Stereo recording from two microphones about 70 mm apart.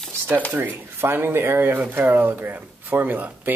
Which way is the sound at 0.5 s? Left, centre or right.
Right.